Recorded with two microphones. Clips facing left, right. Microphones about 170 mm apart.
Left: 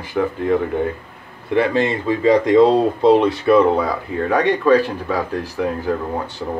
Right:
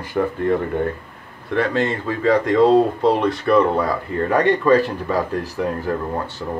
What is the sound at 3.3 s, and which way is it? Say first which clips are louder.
Speech: left 3 dB; 5° left (ahead or behind).